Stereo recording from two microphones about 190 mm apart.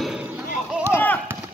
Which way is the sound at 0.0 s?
5° right (ahead or behind).